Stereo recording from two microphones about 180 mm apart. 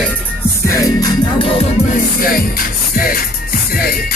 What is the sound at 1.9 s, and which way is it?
Music, 55° left (ahead or behind).